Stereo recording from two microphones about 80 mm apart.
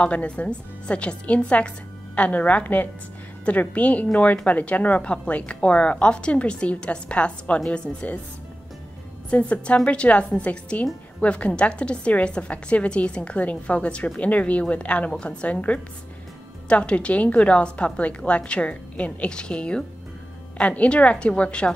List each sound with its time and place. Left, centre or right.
0.0 s a woman's voice: centre
9.3 s a woman's voice: centre